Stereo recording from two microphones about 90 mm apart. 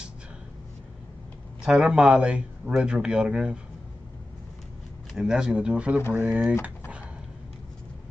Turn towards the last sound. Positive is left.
turn(degrees=-15)  # may be behind; listen again after turning